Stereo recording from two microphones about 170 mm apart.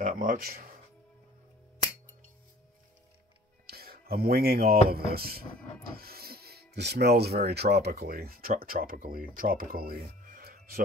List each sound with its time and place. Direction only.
0.0 s speech: 50° right (ahead or behind)
3.6 s speech: 60° right (ahead or behind)